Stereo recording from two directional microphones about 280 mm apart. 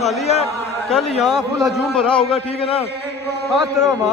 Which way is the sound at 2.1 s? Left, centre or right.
Centre.